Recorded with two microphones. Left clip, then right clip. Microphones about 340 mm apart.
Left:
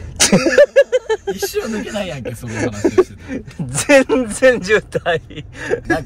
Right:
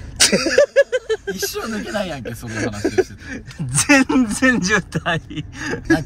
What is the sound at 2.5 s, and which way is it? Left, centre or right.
Speech, centre.